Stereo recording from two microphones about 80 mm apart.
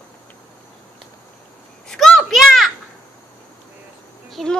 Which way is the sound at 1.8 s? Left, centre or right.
Centre.